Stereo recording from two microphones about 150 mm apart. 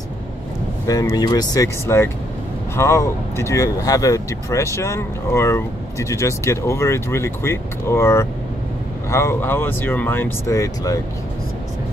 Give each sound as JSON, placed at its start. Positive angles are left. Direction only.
{"t": 0.8, "sound": "speech", "side_deg": 25}